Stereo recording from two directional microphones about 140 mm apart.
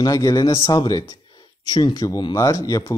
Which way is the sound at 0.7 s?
25° left (ahead or behind).